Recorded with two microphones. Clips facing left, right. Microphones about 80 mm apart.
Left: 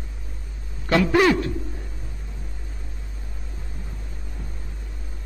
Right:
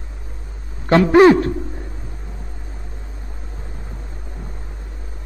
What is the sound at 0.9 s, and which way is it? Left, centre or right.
Speech, right.